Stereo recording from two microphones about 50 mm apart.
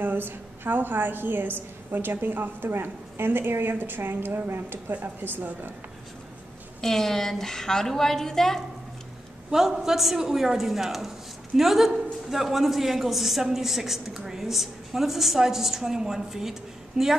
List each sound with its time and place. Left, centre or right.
0.0 s a woman's voice: right
6.8 s a woman's voice: centre
9.5 s a man's voice: centre